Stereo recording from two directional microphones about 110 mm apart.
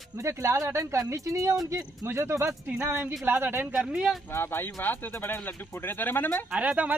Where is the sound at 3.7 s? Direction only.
10° right (ahead or behind).